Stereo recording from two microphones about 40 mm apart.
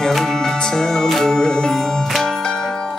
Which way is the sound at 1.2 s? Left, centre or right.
Centre.